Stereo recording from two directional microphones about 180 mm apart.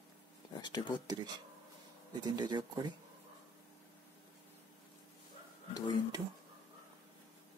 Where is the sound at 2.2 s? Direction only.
25° right (ahead or behind).